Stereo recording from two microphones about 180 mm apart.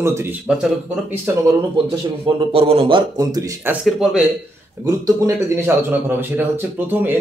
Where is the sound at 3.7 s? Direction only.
5° right (ahead or behind).